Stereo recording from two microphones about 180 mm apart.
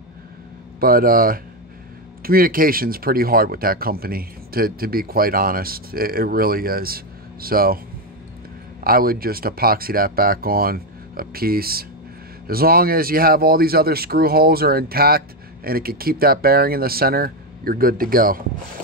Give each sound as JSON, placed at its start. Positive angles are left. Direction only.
{"t": 0.7, "sound": "speech", "side_deg": -55}
{"t": 8.8, "sound": "speech", "side_deg": -55}